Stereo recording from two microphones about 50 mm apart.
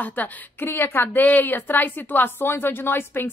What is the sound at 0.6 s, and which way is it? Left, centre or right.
A woman's voice, left.